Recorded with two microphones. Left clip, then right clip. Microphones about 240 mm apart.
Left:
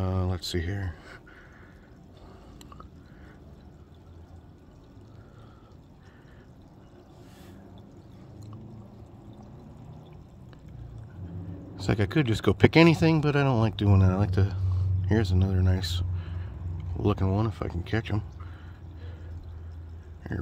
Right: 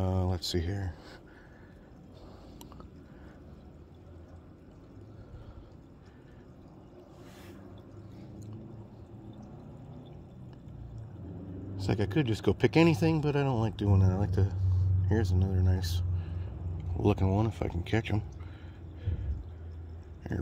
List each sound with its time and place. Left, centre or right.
0.0 s speech: centre
11.8 s speech: centre